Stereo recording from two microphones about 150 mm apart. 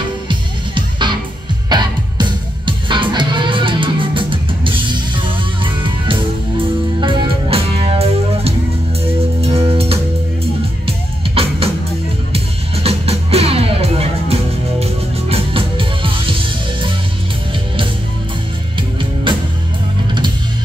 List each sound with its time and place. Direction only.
0.3 s music: 30° right (ahead or behind)
18.8 s music: 35° right (ahead or behind)